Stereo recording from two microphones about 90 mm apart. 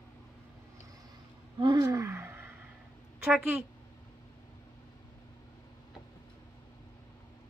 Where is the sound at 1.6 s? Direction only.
45° right (ahead or behind).